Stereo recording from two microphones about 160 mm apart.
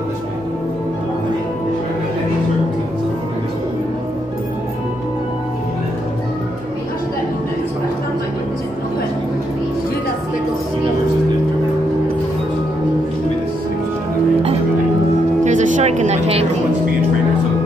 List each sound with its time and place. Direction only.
15.4 s music: 50° right (ahead or behind)